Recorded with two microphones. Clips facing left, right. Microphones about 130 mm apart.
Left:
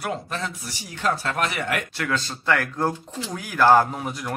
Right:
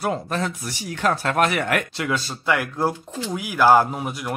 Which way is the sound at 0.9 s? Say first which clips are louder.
Right 4 dB; 60° right (ahead or behind).